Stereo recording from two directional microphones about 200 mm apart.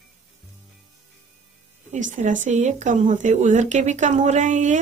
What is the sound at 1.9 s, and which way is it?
Speech, 40° right (ahead or behind).